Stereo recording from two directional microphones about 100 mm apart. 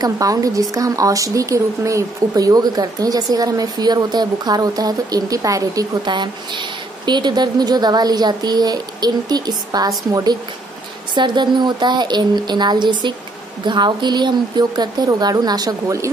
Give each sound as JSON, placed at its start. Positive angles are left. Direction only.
{"t": 0.0, "sound": "speech", "side_deg": -35}
{"t": 6.0, "sound": "a woman's voice", "side_deg": -50}
{"t": 11.1, "sound": "a woman's voice", "side_deg": -50}